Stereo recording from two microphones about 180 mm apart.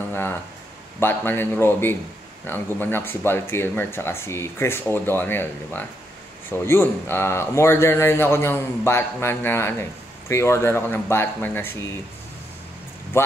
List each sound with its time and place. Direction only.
0.9 s a man's voice: 10° left (ahead or behind)
13.1 s a man's voice: 15° left (ahead or behind)